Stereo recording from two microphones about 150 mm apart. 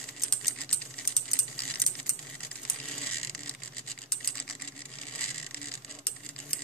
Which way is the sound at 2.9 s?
5° left (ahead or behind).